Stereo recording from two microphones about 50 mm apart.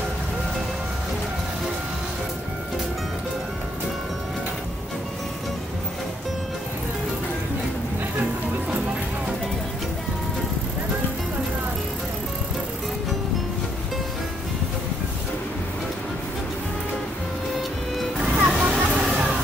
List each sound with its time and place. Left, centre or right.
17.9 s music: centre
18.6 s music: centre